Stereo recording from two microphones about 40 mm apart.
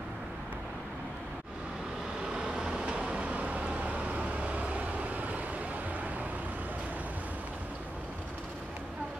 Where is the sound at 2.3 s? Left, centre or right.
Centre; by 5.3 s right.